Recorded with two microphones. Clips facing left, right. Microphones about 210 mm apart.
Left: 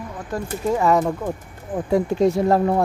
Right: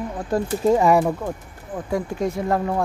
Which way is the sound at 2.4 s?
35° left (ahead or behind).